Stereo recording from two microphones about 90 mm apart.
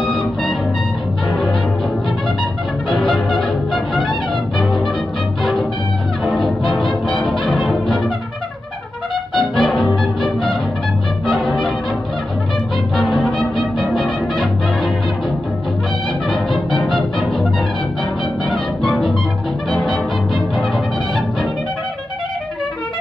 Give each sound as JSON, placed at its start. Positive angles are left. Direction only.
{"t": 2.9, "sound": "music", "side_deg": 10}
{"t": 4.0, "sound": "music", "side_deg": 65}
{"t": 5.4, "sound": "music", "side_deg": 5}
{"t": 6.3, "sound": "brass instrument", "side_deg": 5}
{"t": 9.6, "sound": "music", "side_deg": 5}
{"t": 12.9, "sound": "music", "side_deg": 5}
{"t": 16.7, "sound": "music", "side_deg": 10}
{"t": 18.9, "sound": "music", "side_deg": 5}